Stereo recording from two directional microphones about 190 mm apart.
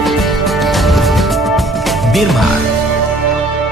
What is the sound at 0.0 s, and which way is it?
Music, centre (ahead or behind).